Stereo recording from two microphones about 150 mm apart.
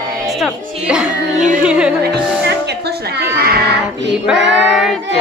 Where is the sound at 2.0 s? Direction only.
90° right.